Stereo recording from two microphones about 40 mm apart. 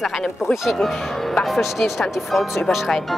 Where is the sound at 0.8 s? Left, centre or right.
Centre.